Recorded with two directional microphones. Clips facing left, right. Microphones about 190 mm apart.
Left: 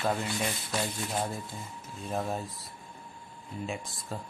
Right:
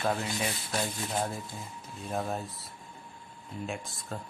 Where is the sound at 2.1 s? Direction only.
Centre (ahead or behind).